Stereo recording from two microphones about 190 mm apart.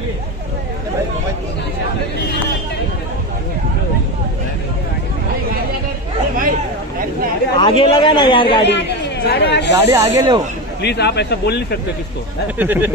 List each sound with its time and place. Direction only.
7.5 s speech: 30° left (ahead or behind)
8.6 s speech: 65° left (ahead or behind)
9.8 s speech: 15° right (ahead or behind)
10.8 s speech: 60° left (ahead or behind)
12.5 s speech: 10° right (ahead or behind)